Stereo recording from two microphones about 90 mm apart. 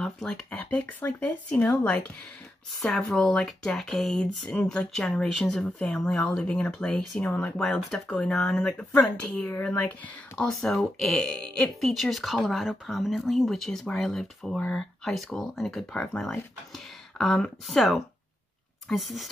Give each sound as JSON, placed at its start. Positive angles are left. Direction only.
{"t": 0.0, "sound": "speech", "side_deg": 5}